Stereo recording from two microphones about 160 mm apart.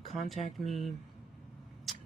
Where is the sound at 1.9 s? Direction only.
Centre (ahead or behind).